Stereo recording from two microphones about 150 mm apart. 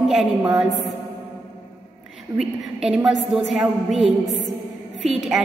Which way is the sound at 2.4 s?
5° right (ahead or behind).